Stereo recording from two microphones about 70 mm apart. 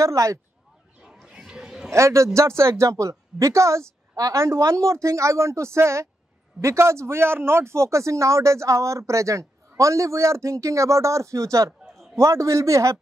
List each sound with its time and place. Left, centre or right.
0.0 s speech: right
1.0 s a sound: centre
1.9 s speech: right